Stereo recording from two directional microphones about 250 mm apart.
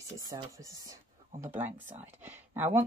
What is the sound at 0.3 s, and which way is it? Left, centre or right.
Speech, centre.